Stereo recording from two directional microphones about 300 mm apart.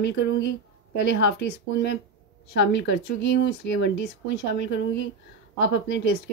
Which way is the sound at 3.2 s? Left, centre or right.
Left.